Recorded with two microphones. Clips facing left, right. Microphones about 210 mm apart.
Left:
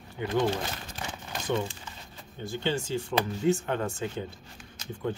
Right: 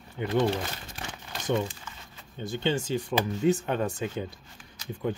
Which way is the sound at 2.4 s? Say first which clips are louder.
Right 2 dB; 20° right (ahead or behind).